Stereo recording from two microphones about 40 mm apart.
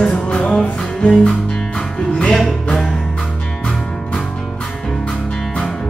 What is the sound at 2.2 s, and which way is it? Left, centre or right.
Music, centre.